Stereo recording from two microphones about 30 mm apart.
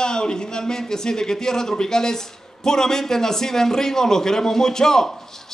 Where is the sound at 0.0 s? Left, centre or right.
Left.